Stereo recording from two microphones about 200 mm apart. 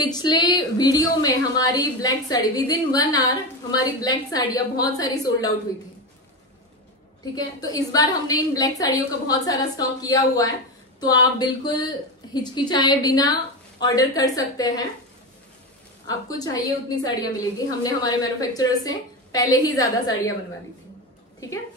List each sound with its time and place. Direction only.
0.0 s a woman's voice: 20° left (ahead or behind)
7.3 s a woman's voice: 20° left (ahead or behind)
16.1 s a woman's voice: 20° left (ahead or behind)